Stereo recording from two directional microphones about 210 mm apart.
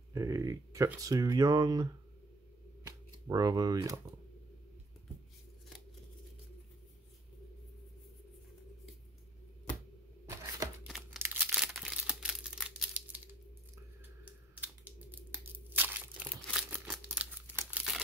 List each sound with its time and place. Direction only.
0.1 s speech: 15° right (ahead or behind)
2.8 s a sound: 15° right (ahead or behind)
10.9 s crumpling: 10° right (ahead or behind)
14.2 s tearing: 10° right (ahead or behind)
16.4 s crumpling: 5° right (ahead or behind)